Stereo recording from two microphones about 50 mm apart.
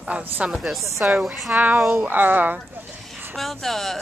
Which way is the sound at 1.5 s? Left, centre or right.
Right.